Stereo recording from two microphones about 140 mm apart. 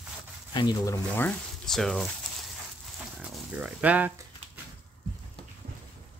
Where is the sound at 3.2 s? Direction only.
5° right (ahead or behind).